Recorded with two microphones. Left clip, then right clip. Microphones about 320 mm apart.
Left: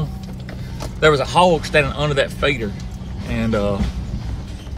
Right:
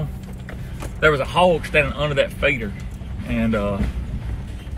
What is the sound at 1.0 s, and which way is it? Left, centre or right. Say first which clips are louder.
A man's voice: left 2 dB; centre.